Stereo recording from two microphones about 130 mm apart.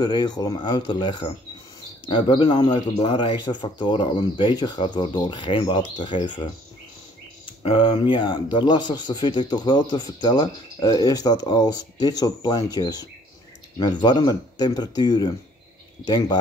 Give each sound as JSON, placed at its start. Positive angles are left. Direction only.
{"t": 0.0, "sound": "a man's voice", "side_deg": 35}
{"t": 7.6, "sound": "a man's voice", "side_deg": 40}